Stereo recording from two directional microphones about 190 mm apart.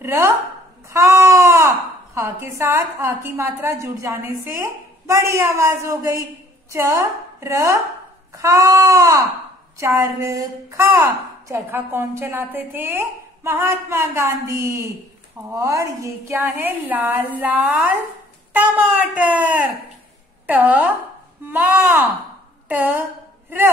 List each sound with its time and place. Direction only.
0.0 s a woman's voice: 10° right (ahead or behind)
0.8 s baby cry: 15° right (ahead or behind)
2.1 s a woman's voice: 15° right (ahead or behind)